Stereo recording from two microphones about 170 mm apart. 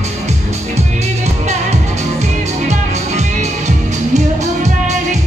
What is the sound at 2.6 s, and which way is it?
Music, 40° right (ahead or behind).